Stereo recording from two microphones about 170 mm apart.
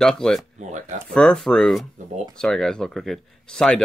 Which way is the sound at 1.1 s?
5° left (ahead or behind).